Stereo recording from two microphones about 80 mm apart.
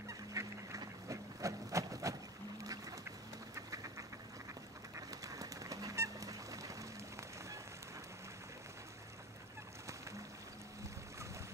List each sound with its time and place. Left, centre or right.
0.3 s duck: right
3.5 s duck: right
4.9 s goose: right